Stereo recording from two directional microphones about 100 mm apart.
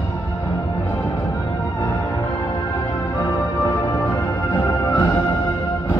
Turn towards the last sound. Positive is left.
turn(degrees=20)  # may be behind; listen again after turning